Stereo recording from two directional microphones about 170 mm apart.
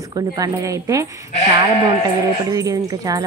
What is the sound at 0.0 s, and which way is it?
A woman's voice, 20° right (ahead or behind).